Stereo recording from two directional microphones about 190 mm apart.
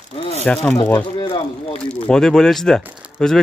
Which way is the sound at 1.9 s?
5° left (ahead or behind).